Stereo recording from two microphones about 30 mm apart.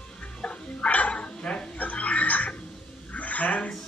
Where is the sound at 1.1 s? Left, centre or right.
Left.